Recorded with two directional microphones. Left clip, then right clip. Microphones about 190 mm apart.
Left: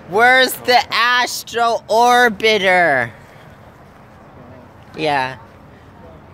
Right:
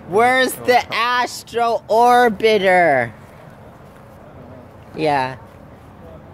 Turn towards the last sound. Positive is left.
turn(degrees=-10)  # may be behind; listen again after turning